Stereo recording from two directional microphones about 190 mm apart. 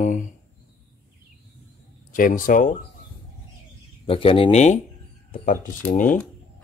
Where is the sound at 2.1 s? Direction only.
45° left (ahead or behind).